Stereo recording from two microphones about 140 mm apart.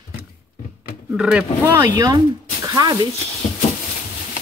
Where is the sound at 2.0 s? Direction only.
30° right (ahead or behind).